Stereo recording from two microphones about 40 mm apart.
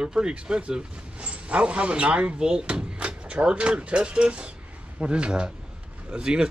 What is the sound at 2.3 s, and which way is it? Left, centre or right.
Speech, centre.